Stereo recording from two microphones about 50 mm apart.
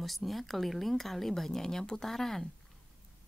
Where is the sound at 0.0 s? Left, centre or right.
Centre.